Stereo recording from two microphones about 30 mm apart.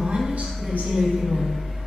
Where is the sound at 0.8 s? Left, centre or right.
Centre.